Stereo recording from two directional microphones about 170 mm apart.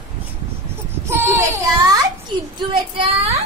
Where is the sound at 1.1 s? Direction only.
15° right (ahead or behind).